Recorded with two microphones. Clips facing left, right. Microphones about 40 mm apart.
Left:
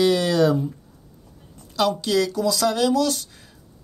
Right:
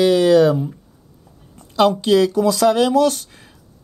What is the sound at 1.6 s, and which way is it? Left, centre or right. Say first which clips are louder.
Speech: right 6 dB; right.